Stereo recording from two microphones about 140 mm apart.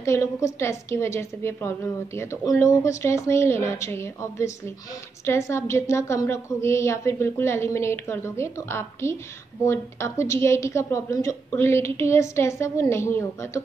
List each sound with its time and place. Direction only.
0.0 s a woman's voice: 20° left (ahead or behind)